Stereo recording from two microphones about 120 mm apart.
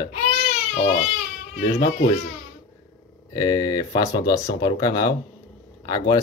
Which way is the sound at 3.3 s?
35° left (ahead or behind).